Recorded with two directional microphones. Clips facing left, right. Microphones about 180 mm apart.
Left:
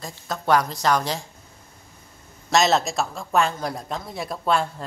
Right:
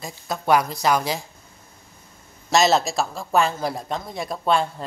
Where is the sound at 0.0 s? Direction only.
10° right (ahead or behind).